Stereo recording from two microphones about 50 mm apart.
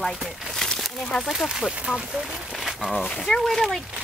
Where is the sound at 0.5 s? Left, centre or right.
Centre.